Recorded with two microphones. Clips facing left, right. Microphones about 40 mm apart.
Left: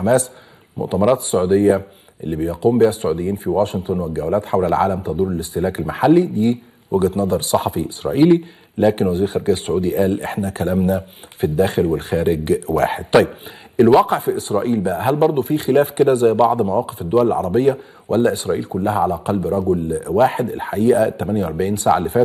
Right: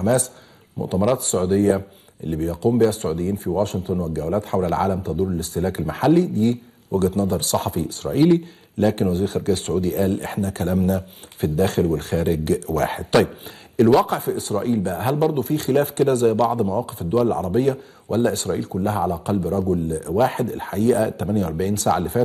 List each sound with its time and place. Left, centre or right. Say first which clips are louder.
0.0 s speech: left 4 dB; centre